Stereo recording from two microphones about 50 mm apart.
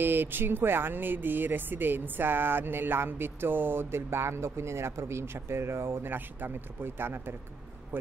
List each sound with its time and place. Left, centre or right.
0.0 s speech: right
6.1 s speech: right